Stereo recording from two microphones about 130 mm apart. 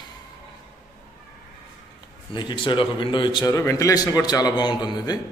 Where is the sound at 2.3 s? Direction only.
35° left (ahead or behind).